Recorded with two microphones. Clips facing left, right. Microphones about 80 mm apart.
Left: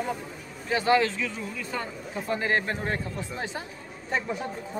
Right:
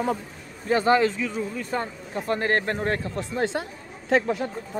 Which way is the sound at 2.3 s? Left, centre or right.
Right.